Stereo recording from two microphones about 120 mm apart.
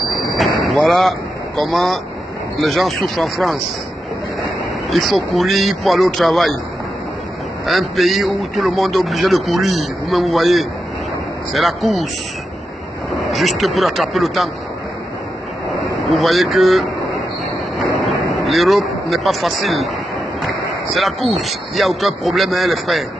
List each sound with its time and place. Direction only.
0.4 s vehicle: centre (ahead or behind)
1.6 s a man's voice: centre (ahead or behind)
4.8 s a man's voice: centre (ahead or behind)
7.6 s a man's voice: centre (ahead or behind)
13.3 s a man's voice: centre (ahead or behind)
16.0 s a man's voice: centre (ahead or behind)
17.9 s speech: centre (ahead or behind)
20.9 s a man's voice: centre (ahead or behind)